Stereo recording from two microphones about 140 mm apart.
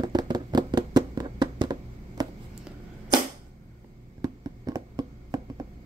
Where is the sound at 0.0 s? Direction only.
30° right (ahead or behind).